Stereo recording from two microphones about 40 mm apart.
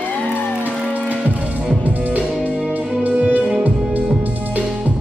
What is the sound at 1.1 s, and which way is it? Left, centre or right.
Music, right.